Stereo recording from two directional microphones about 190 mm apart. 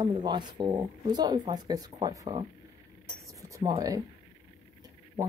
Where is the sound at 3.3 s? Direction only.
20° right (ahead or behind).